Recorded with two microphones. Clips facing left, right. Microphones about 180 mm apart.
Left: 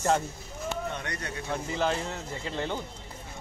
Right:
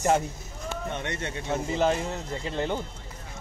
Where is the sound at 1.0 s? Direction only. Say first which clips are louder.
Right 3 dB; 25° right (ahead or behind).